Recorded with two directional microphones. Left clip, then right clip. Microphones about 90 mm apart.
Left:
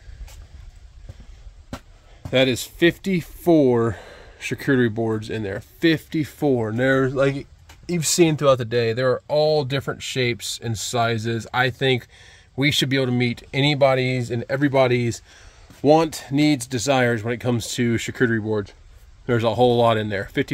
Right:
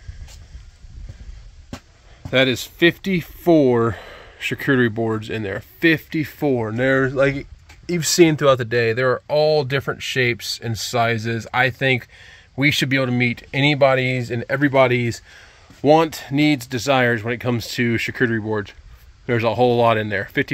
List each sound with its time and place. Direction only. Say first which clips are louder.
2.2 s speech: right 2 dB; 10° left (ahead or behind)
7.8 s speech: right 3 dB; 10° left (ahead or behind); by 20.5 s 25° left (ahead or behind)